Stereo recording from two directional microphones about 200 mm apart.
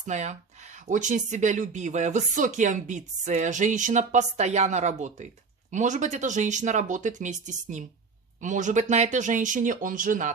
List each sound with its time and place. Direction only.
0.0 s speech: 35° right (ahead or behind)